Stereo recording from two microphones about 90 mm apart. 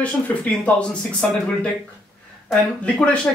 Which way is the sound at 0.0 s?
15° left (ahead or behind).